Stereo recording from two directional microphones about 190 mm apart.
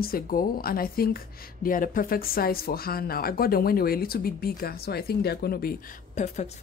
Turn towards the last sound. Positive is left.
turn(degrees=35)  # may be behind; listen again after turning